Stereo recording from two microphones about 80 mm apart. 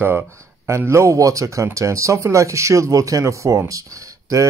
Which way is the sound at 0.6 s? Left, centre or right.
Right.